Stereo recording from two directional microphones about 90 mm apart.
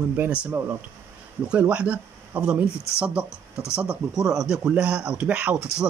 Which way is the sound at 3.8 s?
10° right (ahead or behind).